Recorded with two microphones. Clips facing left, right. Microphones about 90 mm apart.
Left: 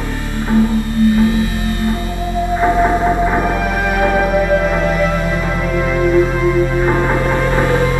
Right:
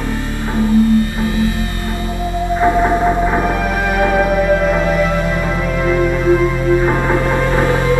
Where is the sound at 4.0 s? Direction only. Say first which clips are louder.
Even; centre (ahead or behind).